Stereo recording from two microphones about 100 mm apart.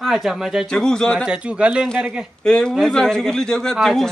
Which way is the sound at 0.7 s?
5° left (ahead or behind).